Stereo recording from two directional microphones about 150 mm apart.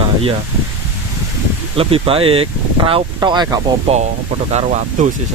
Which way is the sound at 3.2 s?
25° right (ahead or behind).